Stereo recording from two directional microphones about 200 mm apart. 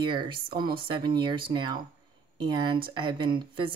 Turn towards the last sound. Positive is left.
turn(degrees=-25)  # may be behind; listen again after turning